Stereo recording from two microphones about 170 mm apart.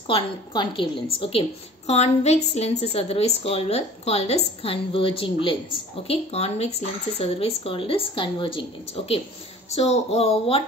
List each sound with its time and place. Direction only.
0.1 s a woman's voice: 30° left (ahead or behind)